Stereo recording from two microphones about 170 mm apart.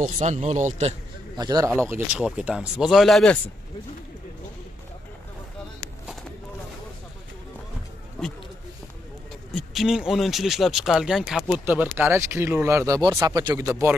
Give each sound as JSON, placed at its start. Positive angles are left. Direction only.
{"t": 0.0, "sound": "speech", "side_deg": -45}
{"t": 1.3, "sound": "a man's voice", "side_deg": -25}
{"t": 9.5, "sound": "speech", "side_deg": 0}